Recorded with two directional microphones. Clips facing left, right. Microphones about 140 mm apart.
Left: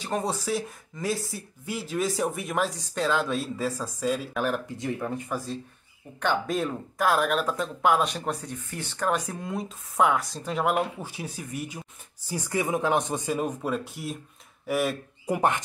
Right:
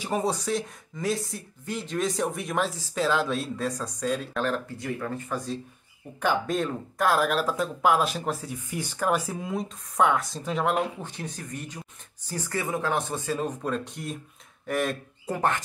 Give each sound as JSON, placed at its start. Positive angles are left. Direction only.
{"t": 0.0, "sound": "speech", "side_deg": -5}
{"t": 4.7, "sound": "speech", "side_deg": 20}
{"t": 6.1, "sound": "speech", "side_deg": 0}